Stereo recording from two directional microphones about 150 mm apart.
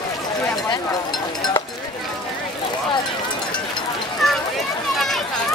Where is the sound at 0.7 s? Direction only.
30° left (ahead or behind).